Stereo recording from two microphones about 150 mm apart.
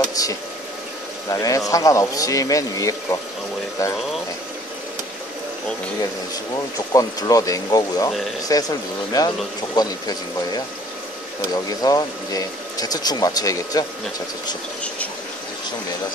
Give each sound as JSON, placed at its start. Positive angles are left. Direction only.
{"t": 0.1, "sound": "speech", "side_deg": 25}
{"t": 6.9, "sound": "speech", "side_deg": 25}